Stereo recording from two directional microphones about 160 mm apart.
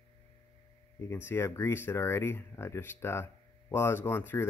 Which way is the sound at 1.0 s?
15° left (ahead or behind).